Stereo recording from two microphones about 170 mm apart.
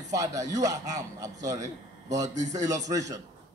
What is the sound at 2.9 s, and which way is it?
Speech, 20° right (ahead or behind).